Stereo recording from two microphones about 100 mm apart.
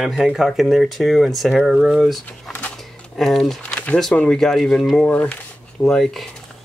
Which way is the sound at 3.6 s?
15° left (ahead or behind).